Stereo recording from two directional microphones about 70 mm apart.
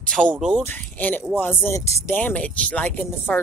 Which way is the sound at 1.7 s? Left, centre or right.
Left.